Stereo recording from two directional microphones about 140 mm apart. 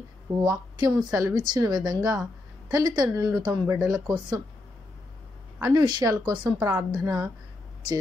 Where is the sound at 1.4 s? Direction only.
30° right (ahead or behind).